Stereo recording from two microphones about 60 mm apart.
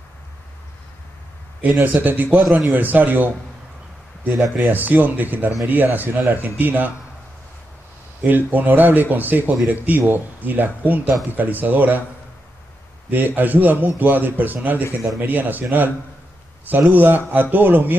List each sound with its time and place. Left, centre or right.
1.6 s a man's voice: right
2.3 s speech: centre
2.7 s a man's voice: right
4.6 s a man's voice: right
8.3 s a man's voice: right
13.1 s a man's voice: right
14.8 s speech: left
15.1 s a man's voice: right
16.9 s a man's voice: right